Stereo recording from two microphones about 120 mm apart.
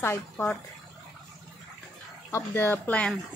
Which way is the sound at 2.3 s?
20° left (ahead or behind).